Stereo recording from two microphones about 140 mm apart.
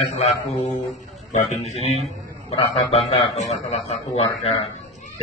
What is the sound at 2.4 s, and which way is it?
A man's voice, 50° left (ahead or behind).